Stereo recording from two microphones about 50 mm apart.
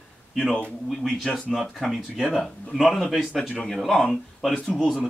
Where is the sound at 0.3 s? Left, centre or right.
Centre.